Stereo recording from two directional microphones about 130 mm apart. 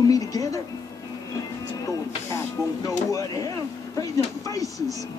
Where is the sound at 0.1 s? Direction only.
25° left (ahead or behind).